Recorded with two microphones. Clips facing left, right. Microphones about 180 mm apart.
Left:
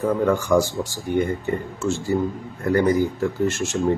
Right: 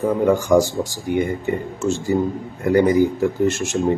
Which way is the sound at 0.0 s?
15° right (ahead or behind).